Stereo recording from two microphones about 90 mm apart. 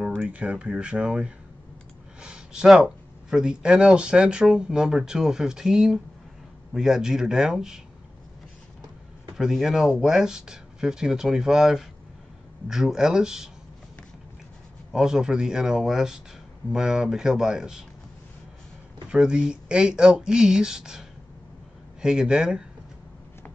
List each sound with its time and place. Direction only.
0.2 s speech: 15° right (ahead or behind)
9.4 s speech: 5° right (ahead or behind)
14.9 s speech: 5° right (ahead or behind)
19.0 s speech: 10° right (ahead or behind)
22.0 s speech: 10° right (ahead or behind)